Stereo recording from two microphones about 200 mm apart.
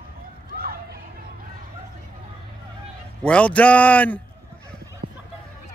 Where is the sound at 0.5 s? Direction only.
50° right (ahead or behind).